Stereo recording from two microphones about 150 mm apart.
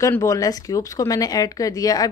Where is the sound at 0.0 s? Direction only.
20° left (ahead or behind).